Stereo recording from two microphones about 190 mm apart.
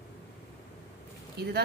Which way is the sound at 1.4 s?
55° right (ahead or behind).